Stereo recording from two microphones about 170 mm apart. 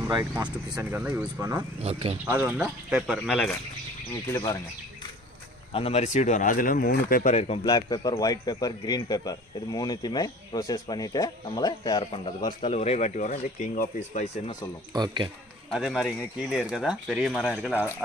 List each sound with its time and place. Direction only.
0.7 s speech: 5° right (ahead or behind)
1.8 s speech: 35° right (ahead or behind)
2.2 s speech: 10° right (ahead or behind)
4.3 s a man's voice: 25° left (ahead or behind)
5.7 s speech: 35° left (ahead or behind); by 7.3 s 60° left (ahead or behind)
7.3 s speech: 40° left (ahead or behind)
7.6 s a man's voice: 25° left (ahead or behind)
12.7 s speech: 40° left (ahead or behind)
14.9 s speech: 25° right (ahead or behind)
15.7 s speech: centre (ahead or behind)